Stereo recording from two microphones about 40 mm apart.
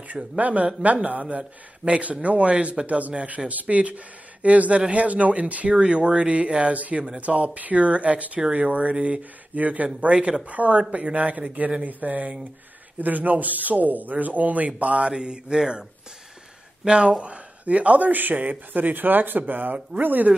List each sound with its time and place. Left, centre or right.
0.1 s speech: right
1.9 s speech: right
9.6 s speech: right
10.5 s speech: right
15.1 s speech: right
16.8 s speech: right